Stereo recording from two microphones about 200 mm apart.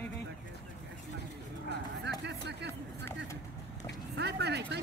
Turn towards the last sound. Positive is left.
turn(degrees=-55)  # may be behind; listen again after turning